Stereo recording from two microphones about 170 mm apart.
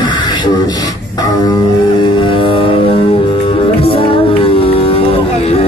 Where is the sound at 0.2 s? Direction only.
25° left (ahead or behind).